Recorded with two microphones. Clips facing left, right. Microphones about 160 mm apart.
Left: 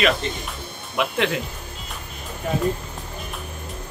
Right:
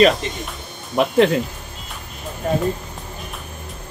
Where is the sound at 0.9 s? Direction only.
40° right (ahead or behind).